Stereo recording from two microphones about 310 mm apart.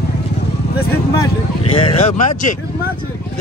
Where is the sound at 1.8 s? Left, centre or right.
Centre.